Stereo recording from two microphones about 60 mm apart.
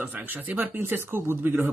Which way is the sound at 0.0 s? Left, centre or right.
Right.